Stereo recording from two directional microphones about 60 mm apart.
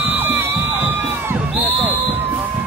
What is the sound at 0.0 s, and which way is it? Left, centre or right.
Crowd, right.